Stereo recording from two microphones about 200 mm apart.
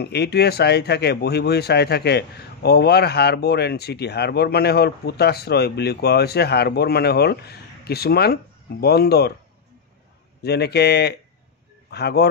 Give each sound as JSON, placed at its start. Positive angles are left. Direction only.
{"t": 0.0, "sound": "speech", "side_deg": 55}
{"t": 10.4, "sound": "speech", "side_deg": 55}